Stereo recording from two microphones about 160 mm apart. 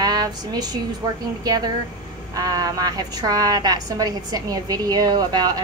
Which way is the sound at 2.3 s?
25° right (ahead or behind).